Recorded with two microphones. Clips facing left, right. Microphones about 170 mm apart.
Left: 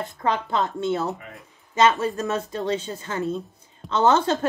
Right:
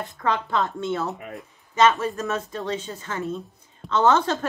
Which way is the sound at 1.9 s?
30° left (ahead or behind).